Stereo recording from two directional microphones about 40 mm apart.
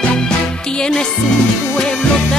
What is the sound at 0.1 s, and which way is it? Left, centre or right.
Music, left.